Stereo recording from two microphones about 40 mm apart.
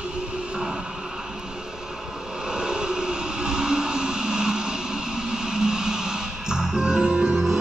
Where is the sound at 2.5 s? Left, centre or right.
Centre.